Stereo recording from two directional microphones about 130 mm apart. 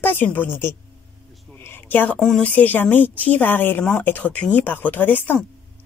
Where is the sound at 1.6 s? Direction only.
15° left (ahead or behind).